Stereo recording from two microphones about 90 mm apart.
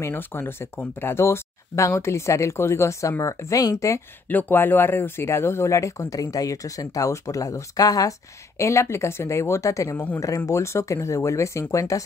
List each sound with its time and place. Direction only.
0.0 s speech: 25° left (ahead or behind)
4.3 s speech: 20° left (ahead or behind); by 8.1 s 45° left (ahead or behind)
8.5 s speech: 35° left (ahead or behind)
9.9 s speech: 20° left (ahead or behind)
10.2 s speech: 35° left (ahead or behind)